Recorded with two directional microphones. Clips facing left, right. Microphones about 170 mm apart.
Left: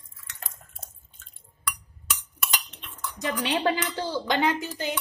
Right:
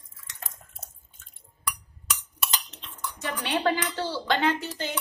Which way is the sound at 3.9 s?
15° left (ahead or behind).